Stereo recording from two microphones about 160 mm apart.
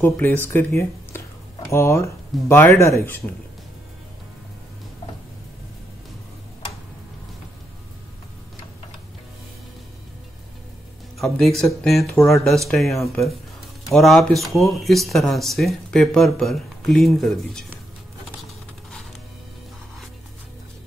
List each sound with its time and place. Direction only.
0.0 s speech: 10° left (ahead or behind)
11.1 s speech: centre (ahead or behind)